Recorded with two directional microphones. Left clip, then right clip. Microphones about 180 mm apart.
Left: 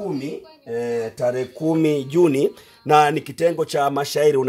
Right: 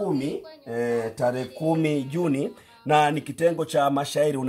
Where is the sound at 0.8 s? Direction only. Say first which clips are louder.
Left 1 dB; 35° left (ahead or behind).